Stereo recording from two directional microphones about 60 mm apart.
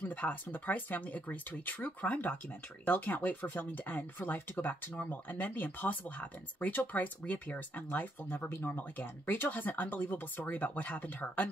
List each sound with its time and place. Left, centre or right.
0.0 s speech: left